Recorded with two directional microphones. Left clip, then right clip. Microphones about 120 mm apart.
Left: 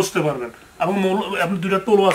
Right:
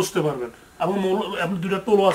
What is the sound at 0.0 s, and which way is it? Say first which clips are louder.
A man's voice: left 3 dB; centre (ahead or behind).